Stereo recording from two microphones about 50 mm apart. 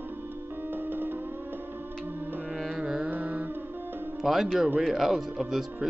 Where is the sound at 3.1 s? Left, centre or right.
Right.